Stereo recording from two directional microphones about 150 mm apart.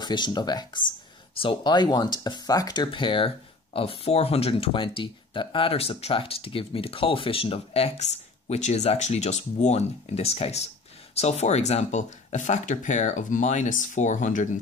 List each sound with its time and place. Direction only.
0.0 s speech: 30° left (ahead or behind); by 14.5 s 55° left (ahead or behind)